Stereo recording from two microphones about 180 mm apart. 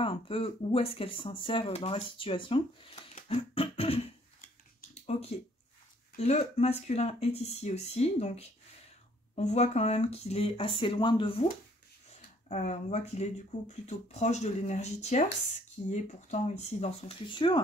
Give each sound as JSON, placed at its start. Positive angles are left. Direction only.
{"t": 0.0, "sound": "speech", "side_deg": 30}
{"t": 5.1, "sound": "speech", "side_deg": 40}
{"t": 12.1, "sound": "speech", "side_deg": 40}